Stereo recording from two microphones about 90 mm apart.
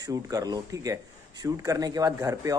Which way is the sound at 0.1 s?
40° right (ahead or behind).